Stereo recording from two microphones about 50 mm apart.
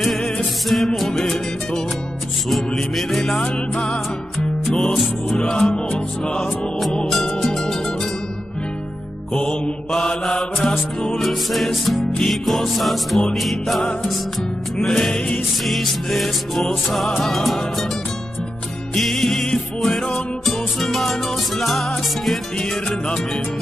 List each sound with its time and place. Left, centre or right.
0.0 s music: centre
3.4 s music: centre
4.6 s music: centre
7.2 s music: centre
9.3 s music: centre
18.9 s music: centre